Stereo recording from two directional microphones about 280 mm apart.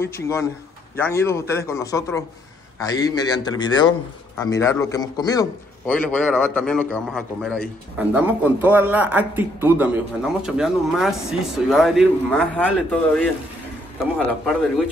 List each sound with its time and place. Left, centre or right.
0.0 s a man's voice: centre